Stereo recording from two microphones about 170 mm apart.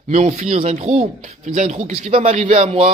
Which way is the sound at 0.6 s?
40° right (ahead or behind).